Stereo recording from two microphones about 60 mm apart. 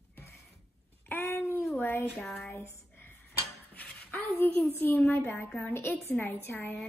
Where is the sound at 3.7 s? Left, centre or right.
Left.